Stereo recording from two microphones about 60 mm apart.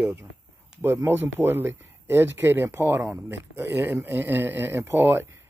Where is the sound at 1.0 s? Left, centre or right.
Right.